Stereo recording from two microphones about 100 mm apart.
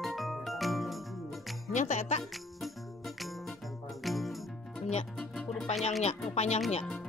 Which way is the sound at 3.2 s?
Centre (ahead or behind).